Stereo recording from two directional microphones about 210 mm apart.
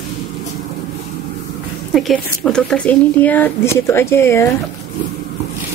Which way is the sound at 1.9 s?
Centre (ahead or behind).